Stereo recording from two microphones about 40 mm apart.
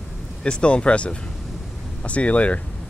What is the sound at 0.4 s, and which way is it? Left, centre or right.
Speech, left.